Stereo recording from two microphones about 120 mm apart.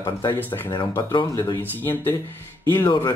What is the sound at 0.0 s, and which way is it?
Speech, 35° left (ahead or behind).